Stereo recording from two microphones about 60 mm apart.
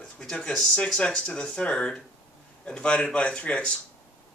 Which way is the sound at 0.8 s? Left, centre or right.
Centre.